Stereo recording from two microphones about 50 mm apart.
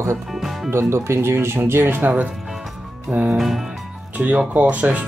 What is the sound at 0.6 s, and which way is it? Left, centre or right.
Speech, right.